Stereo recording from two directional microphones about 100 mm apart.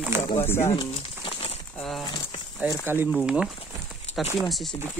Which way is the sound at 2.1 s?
50° left (ahead or behind).